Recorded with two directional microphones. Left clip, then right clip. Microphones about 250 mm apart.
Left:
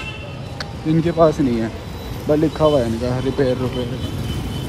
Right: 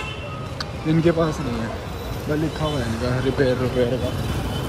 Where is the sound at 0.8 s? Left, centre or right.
Centre.